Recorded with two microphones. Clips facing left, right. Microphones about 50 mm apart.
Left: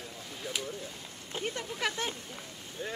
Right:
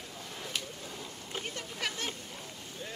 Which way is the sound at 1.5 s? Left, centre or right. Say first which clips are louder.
Left 4 dB; left.